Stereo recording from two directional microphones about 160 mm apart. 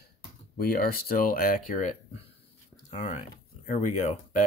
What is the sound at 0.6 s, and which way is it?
Speech, 70° left (ahead or behind).